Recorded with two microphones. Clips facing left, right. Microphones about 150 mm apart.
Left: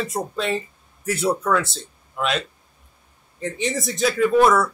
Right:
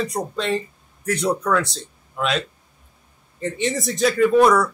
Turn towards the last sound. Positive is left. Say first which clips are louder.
# right 1 dB
turn(degrees=0)  # may be behind; listen again after turning